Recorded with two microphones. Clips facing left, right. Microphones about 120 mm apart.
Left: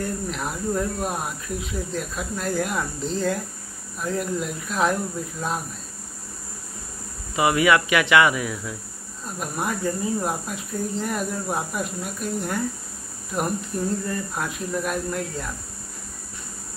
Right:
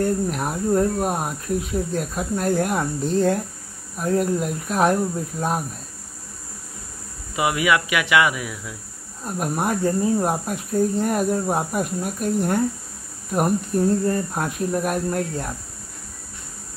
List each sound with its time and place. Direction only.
0.0 s speech: 45° right (ahead or behind)
7.3 s speech: 5° right (ahead or behind)
9.2 s speech: 45° right (ahead or behind)